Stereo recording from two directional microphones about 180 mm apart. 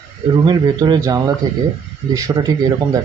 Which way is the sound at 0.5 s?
25° right (ahead or behind).